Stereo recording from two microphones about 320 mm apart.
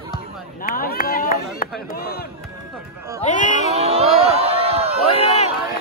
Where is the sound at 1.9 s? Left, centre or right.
Left.